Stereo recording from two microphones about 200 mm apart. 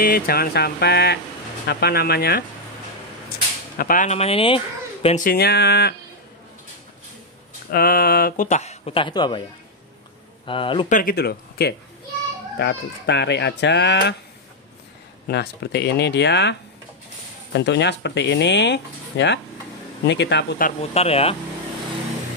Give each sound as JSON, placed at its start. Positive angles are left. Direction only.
{"t": 0.0, "sound": "speech", "side_deg": 50}
{"t": 3.7, "sound": "speech", "side_deg": 45}
{"t": 5.0, "sound": "speech", "side_deg": 40}
{"t": 7.7, "sound": "speech", "side_deg": 50}
{"t": 10.4, "sound": "speech", "side_deg": 25}
{"t": 10.9, "sound": "speech", "side_deg": 45}
{"t": 15.2, "sound": "speech", "side_deg": 55}
{"t": 20.6, "sound": "speech", "side_deg": 30}